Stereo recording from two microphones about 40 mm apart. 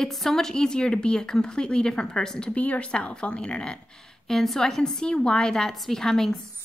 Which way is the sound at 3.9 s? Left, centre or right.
Centre.